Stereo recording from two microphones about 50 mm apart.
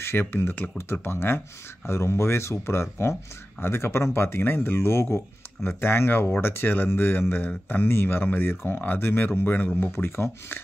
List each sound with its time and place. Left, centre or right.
0.0 s speech: left
1.9 s speech: left